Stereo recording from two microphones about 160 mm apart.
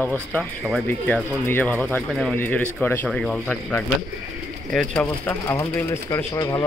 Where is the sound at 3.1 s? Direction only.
Centre (ahead or behind).